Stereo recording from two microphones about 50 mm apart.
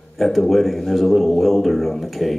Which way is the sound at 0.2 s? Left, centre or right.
Centre.